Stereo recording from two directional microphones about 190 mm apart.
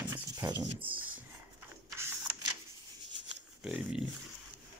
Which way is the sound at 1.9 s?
15° right (ahead or behind).